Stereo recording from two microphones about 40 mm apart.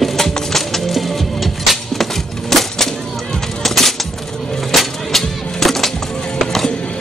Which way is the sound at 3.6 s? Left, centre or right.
Centre.